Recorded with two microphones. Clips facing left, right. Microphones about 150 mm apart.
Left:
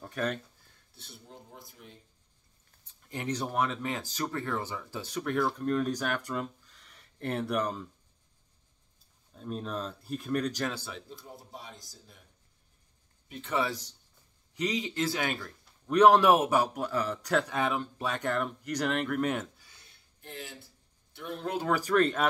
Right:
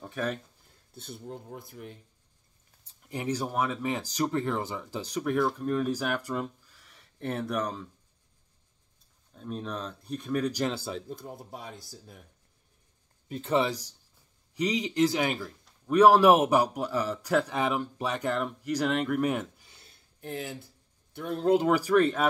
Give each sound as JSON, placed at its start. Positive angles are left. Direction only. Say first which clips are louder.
{"t": 0.0, "sound": "speech", "louder": "even", "side_deg": 0}
{"t": 1.0, "sound": "speech", "louder": "right 9 dB", "side_deg": -55}
{"t": 3.1, "sound": "a man's voice", "louder": "right 2 dB", "side_deg": -10}
{"t": 4.3, "sound": "speech", "louder": "right 4 dB", "side_deg": -25}
{"t": 5.2, "sound": "speech", "louder": "right 2 dB", "side_deg": 0}
{"t": 9.3, "sound": "speech", "louder": "even", "side_deg": 0}
{"t": 10.8, "sound": "speech", "louder": "right 7 dB", "side_deg": -35}
{"t": 11.1, "sound": "speech", "louder": "right 7 dB", "side_deg": -50}
{"t": 13.3, "sound": "speech", "louder": "right 5 dB", "side_deg": -30}
{"t": 14.7, "sound": "a man's voice", "louder": "right 7 dB", "side_deg": -15}
{"t": 19.6, "sound": "a sound", "louder": "right 3 dB", "side_deg": -25}
{"t": 20.2, "sound": "speech", "louder": "right 8 dB", "side_deg": -50}
{"t": 21.5, "sound": "a man's voice", "louder": "right 1 dB", "side_deg": -15}